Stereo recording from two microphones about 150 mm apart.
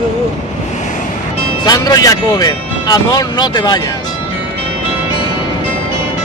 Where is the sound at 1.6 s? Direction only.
25° left (ahead or behind).